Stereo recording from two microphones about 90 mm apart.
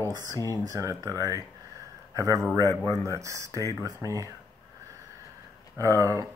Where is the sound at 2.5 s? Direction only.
35° left (ahead or behind).